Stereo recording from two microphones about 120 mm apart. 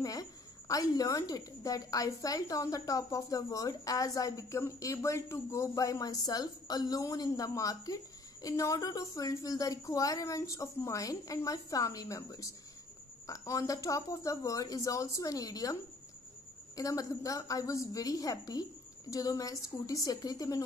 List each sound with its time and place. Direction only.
0.0 s a woman's voice: 30° left (ahead or behind)